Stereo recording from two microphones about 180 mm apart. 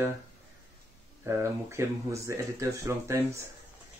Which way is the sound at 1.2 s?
15° right (ahead or behind).